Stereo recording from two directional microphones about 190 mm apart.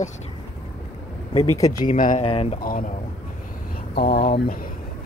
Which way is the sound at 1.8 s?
45° left (ahead or behind).